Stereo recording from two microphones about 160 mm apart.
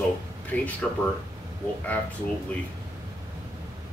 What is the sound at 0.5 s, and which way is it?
Speech, 10° left (ahead or behind).